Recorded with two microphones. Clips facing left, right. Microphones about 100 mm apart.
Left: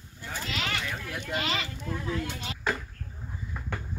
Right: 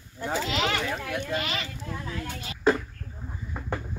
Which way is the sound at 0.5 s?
60° right (ahead or behind).